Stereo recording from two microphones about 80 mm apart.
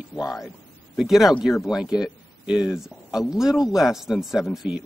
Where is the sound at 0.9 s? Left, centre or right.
Centre.